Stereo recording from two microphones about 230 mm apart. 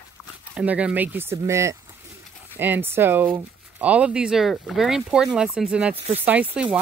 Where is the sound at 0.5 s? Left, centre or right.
Centre.